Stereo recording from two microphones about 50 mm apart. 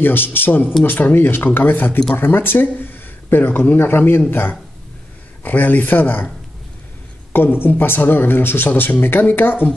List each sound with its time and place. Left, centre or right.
0.0 s speech: left
5.4 s speech: left
7.3 s speech: left